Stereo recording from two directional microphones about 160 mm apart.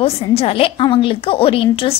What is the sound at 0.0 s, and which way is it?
A woman's voice, 35° left (ahead or behind).